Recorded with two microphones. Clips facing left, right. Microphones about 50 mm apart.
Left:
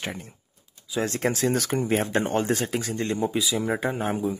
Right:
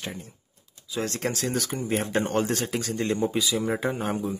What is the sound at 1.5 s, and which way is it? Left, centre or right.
Speech, left.